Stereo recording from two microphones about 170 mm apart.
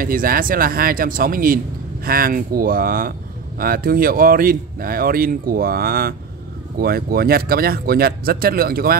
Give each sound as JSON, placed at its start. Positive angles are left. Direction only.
{"t": 0.0, "sound": "speech", "side_deg": -60}